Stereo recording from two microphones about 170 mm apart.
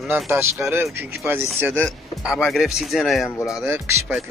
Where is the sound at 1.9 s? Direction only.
Centre (ahead or behind).